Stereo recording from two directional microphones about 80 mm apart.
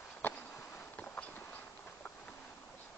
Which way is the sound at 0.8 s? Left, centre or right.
Centre.